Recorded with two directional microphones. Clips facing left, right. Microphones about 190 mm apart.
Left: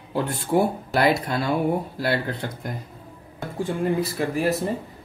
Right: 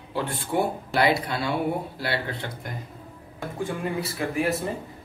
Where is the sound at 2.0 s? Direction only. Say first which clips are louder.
Left 4 dB; 45° left (ahead or behind).